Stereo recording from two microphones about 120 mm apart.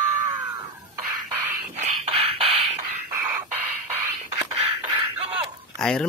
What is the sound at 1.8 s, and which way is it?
Beatboxing, 55° right (ahead or behind).